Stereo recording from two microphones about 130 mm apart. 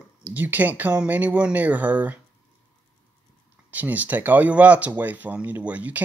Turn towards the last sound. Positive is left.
turn(degrees=-10)  # may be behind; listen again after turning